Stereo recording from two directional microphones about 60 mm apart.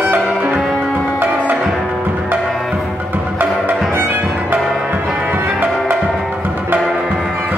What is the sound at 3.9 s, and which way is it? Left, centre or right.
Music, right.